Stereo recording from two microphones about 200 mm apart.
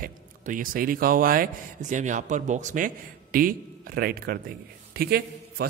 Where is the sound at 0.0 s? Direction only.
40° right (ahead or behind).